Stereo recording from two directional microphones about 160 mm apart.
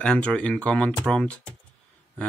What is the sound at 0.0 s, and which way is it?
Speech, 5° left (ahead or behind).